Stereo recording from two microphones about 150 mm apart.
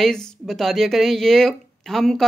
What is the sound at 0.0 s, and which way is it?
Speech, 5° left (ahead or behind).